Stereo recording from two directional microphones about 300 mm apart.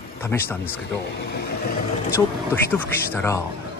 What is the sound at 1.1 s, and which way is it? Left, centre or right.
Speech, left.